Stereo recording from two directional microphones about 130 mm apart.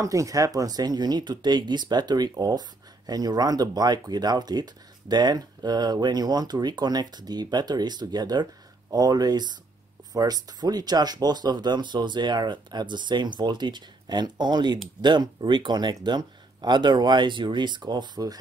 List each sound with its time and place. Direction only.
0.0 s speech: 25° right (ahead or behind)